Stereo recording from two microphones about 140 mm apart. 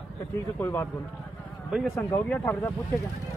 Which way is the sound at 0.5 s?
15° left (ahead or behind).